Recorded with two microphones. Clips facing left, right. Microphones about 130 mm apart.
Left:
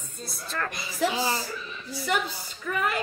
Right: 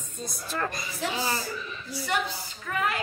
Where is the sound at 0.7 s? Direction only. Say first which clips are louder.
Left 4 dB; 20° left (ahead or behind).